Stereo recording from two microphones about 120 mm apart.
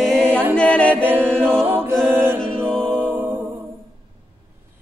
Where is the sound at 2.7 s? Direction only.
5° left (ahead or behind).